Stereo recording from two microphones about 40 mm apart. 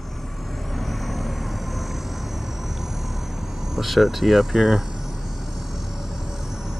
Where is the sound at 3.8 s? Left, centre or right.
Centre.